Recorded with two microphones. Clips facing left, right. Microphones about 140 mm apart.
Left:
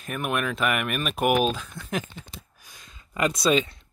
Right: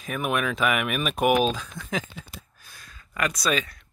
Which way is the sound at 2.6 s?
15° left (ahead or behind).